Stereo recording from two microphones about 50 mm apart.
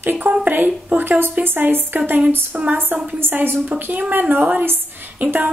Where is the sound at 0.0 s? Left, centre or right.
Right.